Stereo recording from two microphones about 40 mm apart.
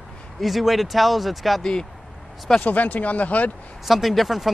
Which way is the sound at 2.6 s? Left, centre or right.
Left.